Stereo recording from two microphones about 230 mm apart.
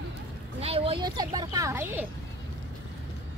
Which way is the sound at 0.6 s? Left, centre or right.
Right.